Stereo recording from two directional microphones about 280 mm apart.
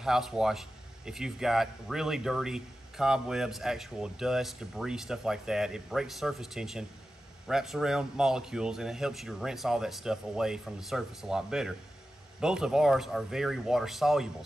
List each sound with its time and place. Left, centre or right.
0.0 s speech: centre